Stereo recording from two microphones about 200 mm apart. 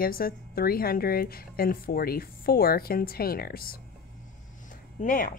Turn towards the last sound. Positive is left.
turn(degrees=45)  # may be behind; listen again after turning